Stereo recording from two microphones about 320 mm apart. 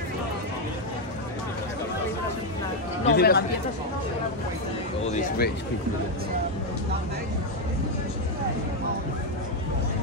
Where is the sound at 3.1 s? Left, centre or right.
Left.